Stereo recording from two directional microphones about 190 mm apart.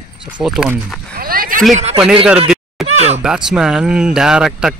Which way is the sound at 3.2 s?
5° right (ahead or behind).